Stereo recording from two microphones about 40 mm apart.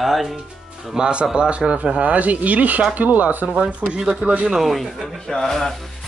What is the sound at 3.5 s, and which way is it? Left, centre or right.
Speech, right.